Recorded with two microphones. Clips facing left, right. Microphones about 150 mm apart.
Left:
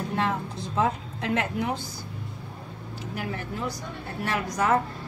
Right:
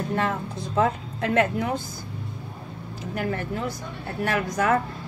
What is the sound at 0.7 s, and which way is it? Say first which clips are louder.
Speech: right 3 dB; 50° right (ahead or behind).